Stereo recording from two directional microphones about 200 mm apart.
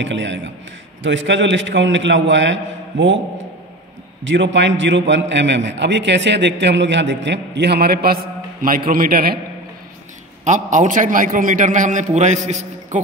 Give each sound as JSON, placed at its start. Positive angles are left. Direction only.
{"t": 0.0, "sound": "a man's voice", "side_deg": -65}
{"t": 4.2, "sound": "a man's voice", "side_deg": -65}
{"t": 10.4, "sound": "a man's voice", "side_deg": -40}